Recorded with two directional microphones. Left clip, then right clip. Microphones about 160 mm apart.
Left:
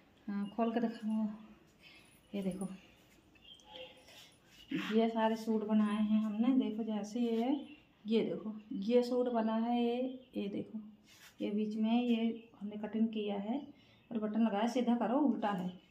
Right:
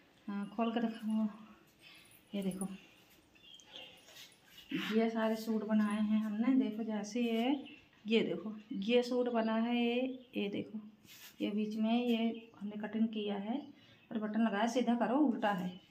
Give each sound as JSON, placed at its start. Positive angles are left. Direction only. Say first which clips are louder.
{"t": 0.3, "sound": "speech", "louder": "left 1 dB", "side_deg": 0}
{"t": 1.9, "sound": "a sound", "louder": "even", "side_deg": 0}
{"t": 4.6, "sound": "a woman's voice", "louder": "left 1 dB", "side_deg": 5}